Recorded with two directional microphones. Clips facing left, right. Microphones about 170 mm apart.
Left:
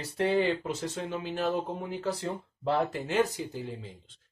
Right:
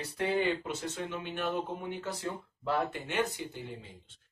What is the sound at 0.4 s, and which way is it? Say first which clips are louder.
Speech: left 3 dB; 30° left (ahead or behind).